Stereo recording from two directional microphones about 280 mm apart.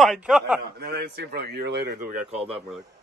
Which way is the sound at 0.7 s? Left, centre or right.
Right.